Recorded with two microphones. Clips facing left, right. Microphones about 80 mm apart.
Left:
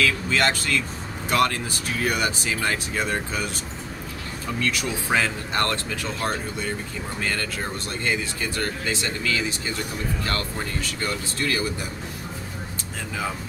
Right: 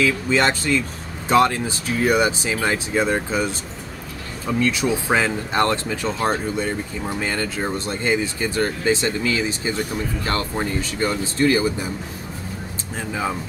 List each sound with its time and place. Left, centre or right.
0.0 s speech: right
4.6 s speech: right